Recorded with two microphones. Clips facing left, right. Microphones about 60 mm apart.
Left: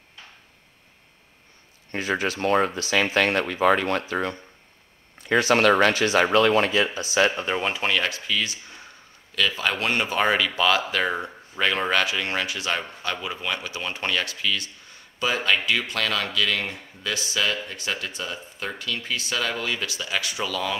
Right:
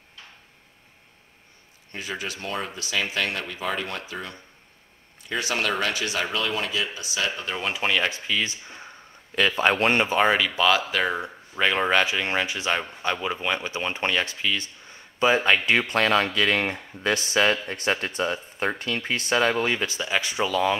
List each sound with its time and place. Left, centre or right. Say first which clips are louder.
1.9 s speech: left 7 dB; left
7.7 s speech: even; centre; by 10.1 s right
10.1 s speech: right 1 dB; centre
11.1 s speech: right 1 dB; centre